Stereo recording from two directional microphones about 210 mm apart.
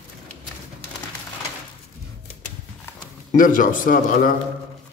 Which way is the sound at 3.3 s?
40° left (ahead or behind).